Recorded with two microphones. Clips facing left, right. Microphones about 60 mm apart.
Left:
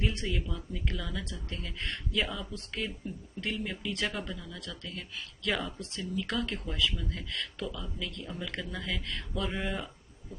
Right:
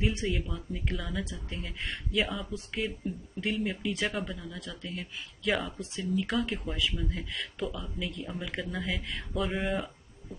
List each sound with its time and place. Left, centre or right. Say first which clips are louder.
0.0 s speech: right 3 dB; centre
4.6 s speech: right 2 dB; right
4.9 s speech: right 2 dB; centre